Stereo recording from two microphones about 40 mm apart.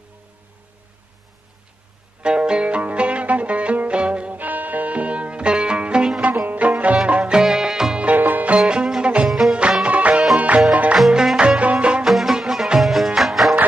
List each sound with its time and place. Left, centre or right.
2.2 s music: right
4.3 s music: right
6.4 s music: right
6.7 s music: right
7.3 s music: centre
8.2 s music: right
8.5 s music: right
11.3 s music: right
12.0 s music: centre